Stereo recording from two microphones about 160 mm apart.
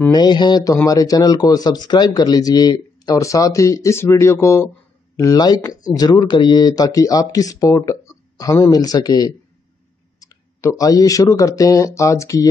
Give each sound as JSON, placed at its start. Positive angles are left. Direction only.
{"t": 0.0, "sound": "speech", "side_deg": 25}